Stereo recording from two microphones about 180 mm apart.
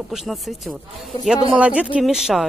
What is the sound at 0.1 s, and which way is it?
Speech, centre (ahead or behind).